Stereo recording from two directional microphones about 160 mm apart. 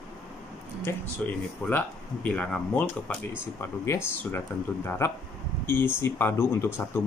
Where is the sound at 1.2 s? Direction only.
5° left (ahead or behind).